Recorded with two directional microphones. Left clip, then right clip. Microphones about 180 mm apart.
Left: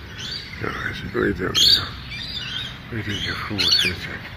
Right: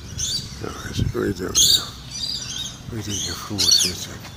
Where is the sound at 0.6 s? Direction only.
15° right (ahead or behind).